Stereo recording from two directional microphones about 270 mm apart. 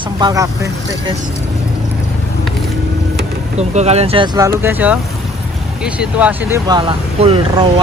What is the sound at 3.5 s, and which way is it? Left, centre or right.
Speech, right.